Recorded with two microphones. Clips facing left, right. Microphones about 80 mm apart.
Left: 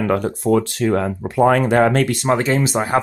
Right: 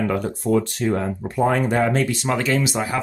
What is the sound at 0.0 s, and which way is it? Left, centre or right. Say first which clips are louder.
Speech: left 4 dB; left.